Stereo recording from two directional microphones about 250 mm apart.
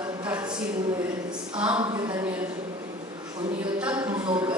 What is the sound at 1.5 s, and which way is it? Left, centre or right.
Speech, centre.